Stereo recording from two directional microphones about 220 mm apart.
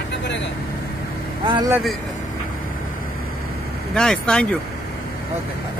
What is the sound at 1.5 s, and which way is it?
Speech, 20° right (ahead or behind).